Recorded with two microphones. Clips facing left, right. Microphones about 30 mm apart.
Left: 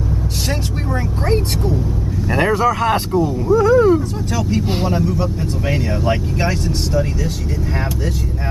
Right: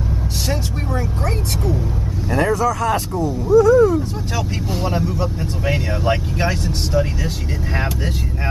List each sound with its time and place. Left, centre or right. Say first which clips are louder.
2.3 s speech: left 2 dB; left
4.4 s speech: left 5 dB; centre
6.9 s speech: right 1 dB; centre